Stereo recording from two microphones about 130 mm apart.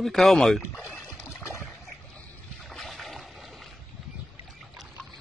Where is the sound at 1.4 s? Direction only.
20° left (ahead or behind).